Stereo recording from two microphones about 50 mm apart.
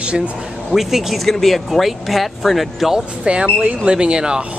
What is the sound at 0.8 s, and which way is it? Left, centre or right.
Speech, centre.